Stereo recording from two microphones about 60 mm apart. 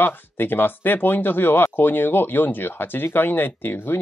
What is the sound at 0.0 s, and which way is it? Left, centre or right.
Speech, left.